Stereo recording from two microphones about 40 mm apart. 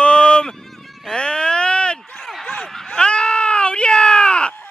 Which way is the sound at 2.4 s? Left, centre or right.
Centre.